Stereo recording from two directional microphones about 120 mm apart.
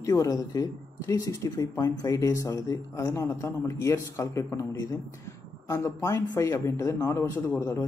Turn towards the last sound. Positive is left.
turn(degrees=25)  # may be behind; listen again after turning